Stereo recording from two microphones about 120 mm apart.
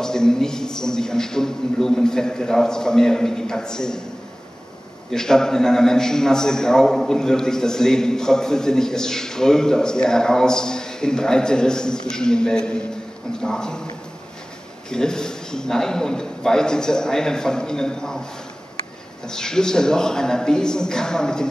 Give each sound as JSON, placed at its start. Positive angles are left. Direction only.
{"t": 0.0, "sound": "a man's voice", "side_deg": 5}
{"t": 5.1, "sound": "a man's voice", "side_deg": 5}
{"t": 14.9, "sound": "a man's voice", "side_deg": 5}
{"t": 19.2, "sound": "a man's voice", "side_deg": 5}